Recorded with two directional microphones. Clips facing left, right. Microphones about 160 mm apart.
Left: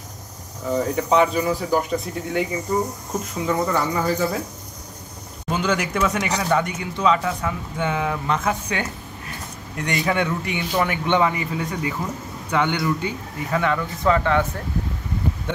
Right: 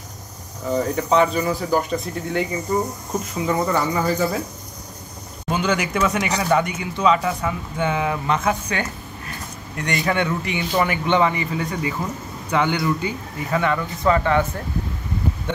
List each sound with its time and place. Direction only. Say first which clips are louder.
0.7 s cricket: even; 10° left (ahead or behind)
1.4 s speech: even; 5° left (ahead or behind)
3.3 s speech: right 1 dB; 5° right (ahead or behind)
5.5 s speech: right 1 dB; centre (ahead or behind)